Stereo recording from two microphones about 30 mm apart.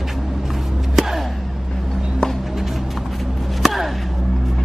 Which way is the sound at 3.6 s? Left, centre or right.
Centre.